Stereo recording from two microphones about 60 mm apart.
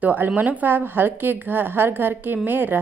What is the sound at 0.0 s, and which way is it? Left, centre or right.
A woman's voice, right.